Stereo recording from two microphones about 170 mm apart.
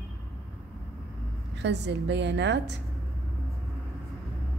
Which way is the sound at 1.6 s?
90° right.